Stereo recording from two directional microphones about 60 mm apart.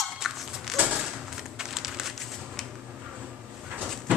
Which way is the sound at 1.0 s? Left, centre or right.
Centre.